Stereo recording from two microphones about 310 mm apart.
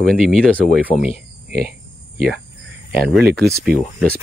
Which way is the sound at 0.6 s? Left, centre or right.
Left.